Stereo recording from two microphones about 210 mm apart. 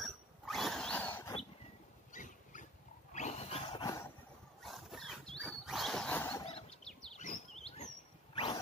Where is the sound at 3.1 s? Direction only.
30° left (ahead or behind).